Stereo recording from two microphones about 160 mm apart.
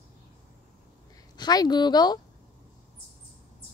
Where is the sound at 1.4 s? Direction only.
25° left (ahead or behind).